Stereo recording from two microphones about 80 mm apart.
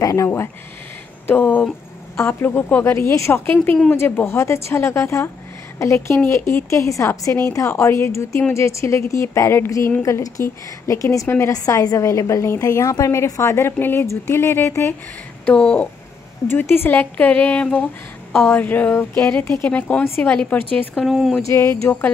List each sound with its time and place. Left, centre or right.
0.0 s a woman's voice: left
1.2 s a woman's voice: left
2.8 s a woman's voice: left
3.4 s a woman's voice: left
11.2 s a woman's voice: left
11.5 s a woman's voice: left
15.4 s speech: centre
16.4 s a woman's voice: left
21.1 s speech: centre
21.4 s a woman's voice: left